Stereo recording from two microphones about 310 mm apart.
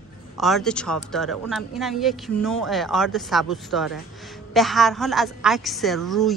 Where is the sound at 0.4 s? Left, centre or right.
Centre.